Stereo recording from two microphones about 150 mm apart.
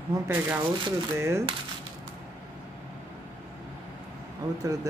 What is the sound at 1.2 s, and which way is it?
Speech, 20° right (ahead or behind).